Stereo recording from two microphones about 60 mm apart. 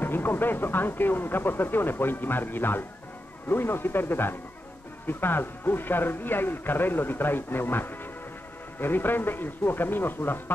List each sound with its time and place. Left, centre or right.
0.0 s speech: left